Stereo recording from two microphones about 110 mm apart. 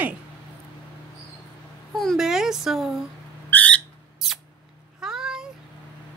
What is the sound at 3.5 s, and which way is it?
Owl, 10° left (ahead or behind).